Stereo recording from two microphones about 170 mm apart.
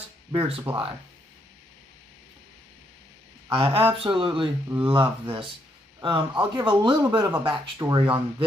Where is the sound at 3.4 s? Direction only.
30° right (ahead or behind).